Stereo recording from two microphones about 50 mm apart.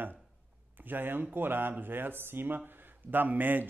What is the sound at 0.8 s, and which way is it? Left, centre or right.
Speech, right.